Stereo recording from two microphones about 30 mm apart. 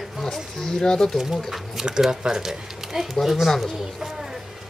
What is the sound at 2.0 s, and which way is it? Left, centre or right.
Speech, right.